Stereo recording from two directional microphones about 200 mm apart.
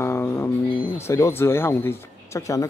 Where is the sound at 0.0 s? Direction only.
10° left (ahead or behind).